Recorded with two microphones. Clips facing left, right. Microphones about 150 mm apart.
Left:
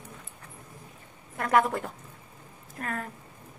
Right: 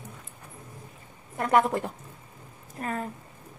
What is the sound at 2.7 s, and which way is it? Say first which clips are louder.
Speech: right 3 dB; 20° right (ahead or behind).